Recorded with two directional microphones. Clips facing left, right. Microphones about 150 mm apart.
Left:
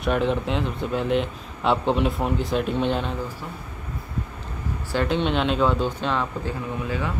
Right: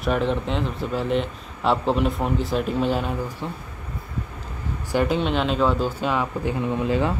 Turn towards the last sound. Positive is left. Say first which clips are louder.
# right 6 dB
turn(degrees=-30)  # may be behind; listen again after turning